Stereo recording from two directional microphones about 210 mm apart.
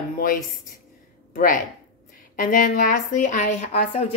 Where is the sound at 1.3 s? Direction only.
40° left (ahead or behind).